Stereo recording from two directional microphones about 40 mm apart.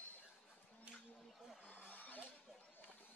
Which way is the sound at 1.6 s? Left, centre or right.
Left.